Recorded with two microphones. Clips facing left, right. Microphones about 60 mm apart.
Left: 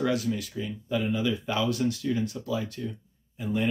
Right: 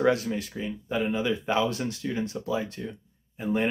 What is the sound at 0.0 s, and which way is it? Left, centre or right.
Speech, right.